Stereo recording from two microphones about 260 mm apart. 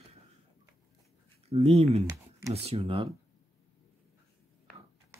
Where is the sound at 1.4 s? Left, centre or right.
Right.